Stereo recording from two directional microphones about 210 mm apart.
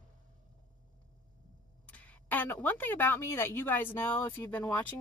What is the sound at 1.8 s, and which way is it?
A woman's voice, 5° left (ahead or behind).